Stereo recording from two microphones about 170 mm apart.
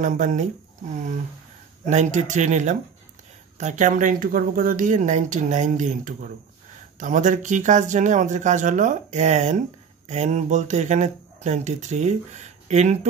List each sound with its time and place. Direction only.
0.0 s speech: 45° right (ahead or behind)